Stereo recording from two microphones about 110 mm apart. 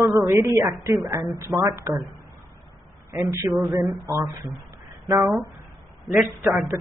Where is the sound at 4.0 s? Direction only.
30° right (ahead or behind).